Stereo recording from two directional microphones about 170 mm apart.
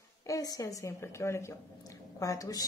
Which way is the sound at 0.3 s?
20° left (ahead or behind).